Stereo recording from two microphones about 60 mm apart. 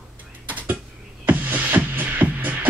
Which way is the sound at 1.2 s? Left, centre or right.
Right.